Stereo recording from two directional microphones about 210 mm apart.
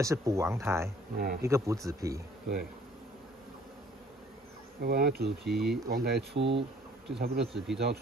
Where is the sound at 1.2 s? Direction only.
45° right (ahead or behind).